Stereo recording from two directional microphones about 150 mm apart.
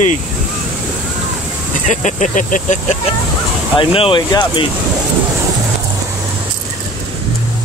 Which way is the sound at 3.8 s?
35° left (ahead or behind).